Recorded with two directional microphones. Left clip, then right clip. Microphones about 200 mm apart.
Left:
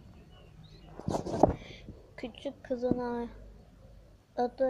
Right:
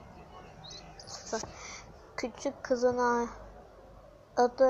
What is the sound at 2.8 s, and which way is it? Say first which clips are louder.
Speech: right 6 dB; 15° right (ahead or behind).